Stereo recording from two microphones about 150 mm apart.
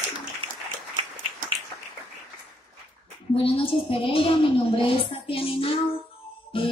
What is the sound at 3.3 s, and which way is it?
A woman's voice, 40° left (ahead or behind).